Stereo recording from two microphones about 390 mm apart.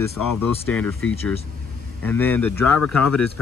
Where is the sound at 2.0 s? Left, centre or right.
Centre.